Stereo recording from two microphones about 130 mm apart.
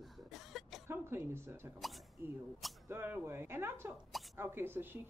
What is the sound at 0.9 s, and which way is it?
Speech, 20° right (ahead or behind).